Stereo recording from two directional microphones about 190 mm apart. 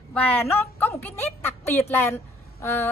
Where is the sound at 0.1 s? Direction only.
10° left (ahead or behind).